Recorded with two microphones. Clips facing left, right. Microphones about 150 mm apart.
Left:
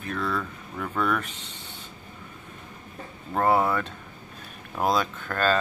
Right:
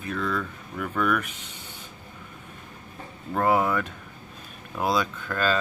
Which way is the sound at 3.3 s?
30° left (ahead or behind).